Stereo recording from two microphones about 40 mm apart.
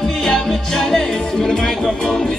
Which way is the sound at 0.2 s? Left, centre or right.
Centre.